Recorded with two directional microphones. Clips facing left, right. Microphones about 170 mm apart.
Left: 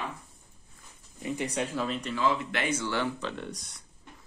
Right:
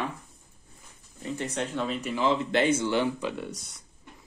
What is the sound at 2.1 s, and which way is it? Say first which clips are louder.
Speech: right 5 dB; 25° right (ahead or behind).